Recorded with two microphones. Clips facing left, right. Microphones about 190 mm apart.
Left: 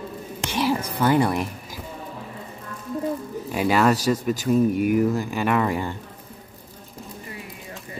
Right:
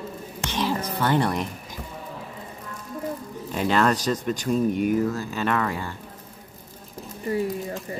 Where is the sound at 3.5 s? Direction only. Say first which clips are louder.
Left 2 dB; 10° left (ahead or behind).